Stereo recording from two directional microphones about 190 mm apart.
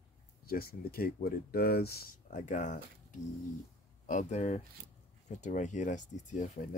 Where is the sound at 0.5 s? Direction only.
50° left (ahead or behind).